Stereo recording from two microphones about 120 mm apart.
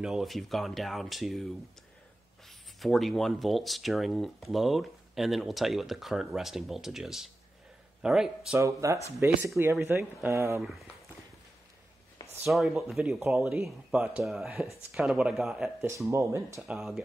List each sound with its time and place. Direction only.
0.0 s speech: centre (ahead or behind)
8.5 s speech: 25° right (ahead or behind)
12.4 s speech: centre (ahead or behind)
16.1 s speech: 20° right (ahead or behind)
16.7 s speech: centre (ahead or behind)